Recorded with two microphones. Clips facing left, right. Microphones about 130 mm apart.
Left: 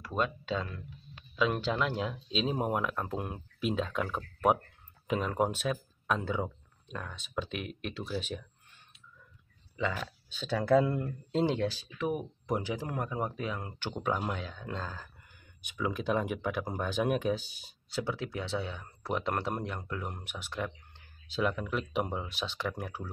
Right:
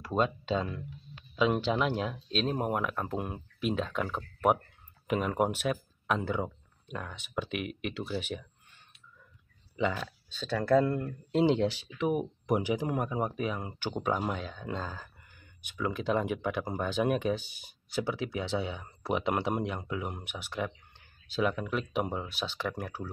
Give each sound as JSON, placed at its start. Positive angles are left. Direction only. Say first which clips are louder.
{"t": 0.0, "sound": "speech", "louder": "right 3 dB", "side_deg": -25}
{"t": 2.0, "sound": "speech", "louder": "right 1 dB", "side_deg": 0}
{"t": 9.9, "sound": "speech", "louder": "right 1 dB", "side_deg": 5}
{"t": 11.3, "sound": "speech", "louder": "right 4 dB", "side_deg": -15}